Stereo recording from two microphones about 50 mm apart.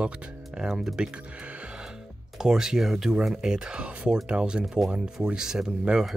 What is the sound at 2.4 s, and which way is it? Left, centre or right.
Speech, centre.